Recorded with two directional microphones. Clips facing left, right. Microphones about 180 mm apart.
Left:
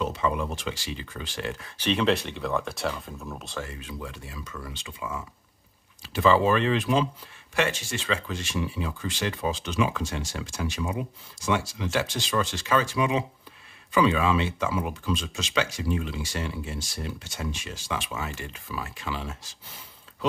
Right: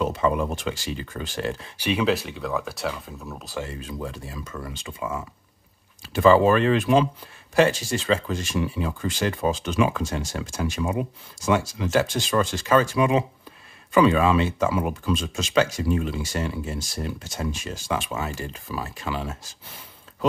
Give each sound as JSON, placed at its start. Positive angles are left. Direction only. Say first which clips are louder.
{"t": 0.0, "sound": "speech", "louder": "right 4 dB", "side_deg": -50}
{"t": 1.8, "sound": "speech", "louder": "right 1 dB", "side_deg": -10}
{"t": 3.6, "sound": "speech", "louder": "right 5 dB", "side_deg": -35}
{"t": 7.5, "sound": "speech", "louder": "right 7 dB", "side_deg": -35}